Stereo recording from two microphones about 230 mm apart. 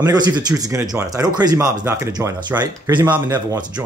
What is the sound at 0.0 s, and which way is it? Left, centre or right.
Speech, centre.